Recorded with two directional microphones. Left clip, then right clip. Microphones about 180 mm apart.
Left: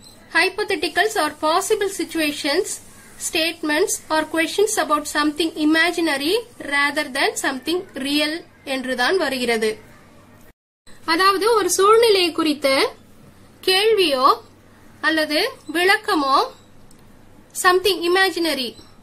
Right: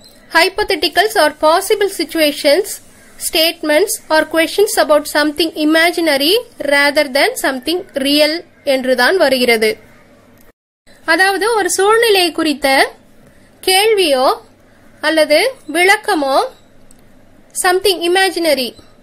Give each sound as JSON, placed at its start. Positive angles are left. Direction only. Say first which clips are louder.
{"t": 0.3, "sound": "speech", "louder": "right 6 dB", "side_deg": -30}
{"t": 11.1, "sound": "speech", "louder": "right 4 dB", "side_deg": -25}
{"t": 17.6, "sound": "speech", "louder": "right 4 dB", "side_deg": -25}